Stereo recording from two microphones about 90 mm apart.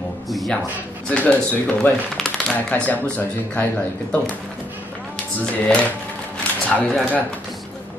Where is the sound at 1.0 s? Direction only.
15° left (ahead or behind).